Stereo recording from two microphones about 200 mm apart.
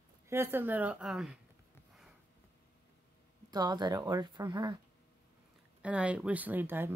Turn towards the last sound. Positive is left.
turn(degrees=-10)  # may be behind; listen again after turning